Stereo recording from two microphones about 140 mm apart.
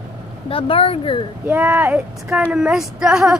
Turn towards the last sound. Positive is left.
turn(degrees=-5)  # may be behind; listen again after turning